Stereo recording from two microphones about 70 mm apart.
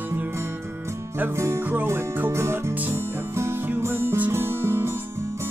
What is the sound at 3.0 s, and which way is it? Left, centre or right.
Music, right.